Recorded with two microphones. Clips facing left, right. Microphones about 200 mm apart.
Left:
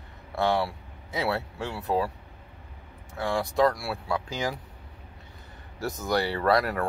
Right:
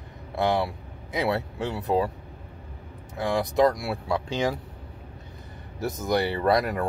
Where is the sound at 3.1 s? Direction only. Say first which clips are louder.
Right 3 dB; 20° right (ahead or behind).